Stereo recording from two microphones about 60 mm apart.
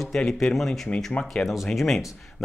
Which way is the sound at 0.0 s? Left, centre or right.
Centre.